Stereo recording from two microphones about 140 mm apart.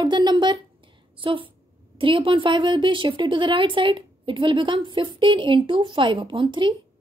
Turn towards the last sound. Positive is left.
turn(degrees=-35)  # may be behind; listen again after turning